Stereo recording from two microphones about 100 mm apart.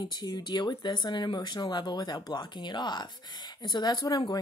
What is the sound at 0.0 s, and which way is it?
Speech, 45° left (ahead or behind).